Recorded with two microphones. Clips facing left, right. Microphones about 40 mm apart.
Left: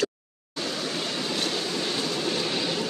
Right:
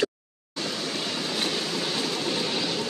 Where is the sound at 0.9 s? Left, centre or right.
Centre.